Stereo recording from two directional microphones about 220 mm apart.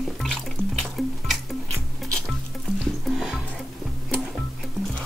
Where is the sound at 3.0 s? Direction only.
Centre (ahead or behind).